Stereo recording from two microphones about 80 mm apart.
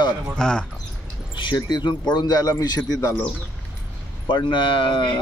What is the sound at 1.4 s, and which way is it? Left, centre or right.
Speech, left.